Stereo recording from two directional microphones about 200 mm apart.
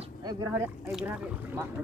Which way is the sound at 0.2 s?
15° right (ahead or behind).